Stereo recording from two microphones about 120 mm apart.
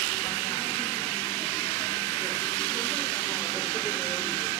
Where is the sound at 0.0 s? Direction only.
35° left (ahead or behind).